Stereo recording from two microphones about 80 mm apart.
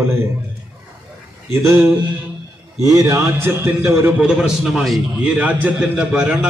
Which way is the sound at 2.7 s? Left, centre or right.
Right.